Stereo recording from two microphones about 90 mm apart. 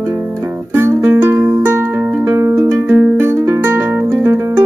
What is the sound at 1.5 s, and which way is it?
Music, 35° right (ahead or behind).